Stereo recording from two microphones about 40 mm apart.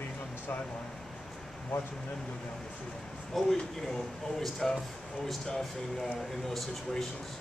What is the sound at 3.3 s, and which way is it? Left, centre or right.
A man's voice, centre.